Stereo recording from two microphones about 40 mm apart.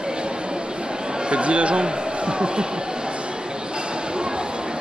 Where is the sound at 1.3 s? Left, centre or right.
Right.